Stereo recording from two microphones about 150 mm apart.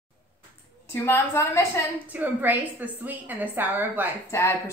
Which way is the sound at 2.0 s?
10° right (ahead or behind).